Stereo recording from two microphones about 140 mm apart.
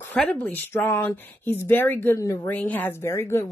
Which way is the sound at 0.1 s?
10° left (ahead or behind).